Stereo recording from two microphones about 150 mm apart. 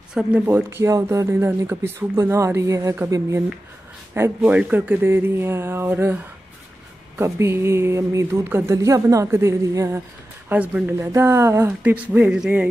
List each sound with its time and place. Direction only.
0.1 s speech: 10° right (ahead or behind)